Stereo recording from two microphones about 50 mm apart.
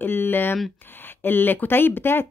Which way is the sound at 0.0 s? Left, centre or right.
Left.